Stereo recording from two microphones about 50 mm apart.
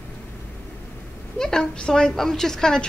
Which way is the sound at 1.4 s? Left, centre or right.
Centre.